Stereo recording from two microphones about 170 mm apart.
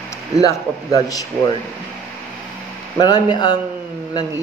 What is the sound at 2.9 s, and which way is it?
Speech, 25° left (ahead or behind).